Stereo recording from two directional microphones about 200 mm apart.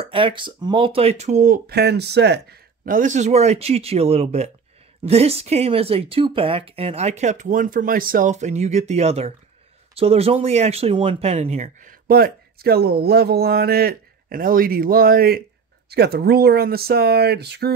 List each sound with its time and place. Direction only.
0.0 s speech: 25° right (ahead or behind); by 17.7 s 55° right (ahead or behind)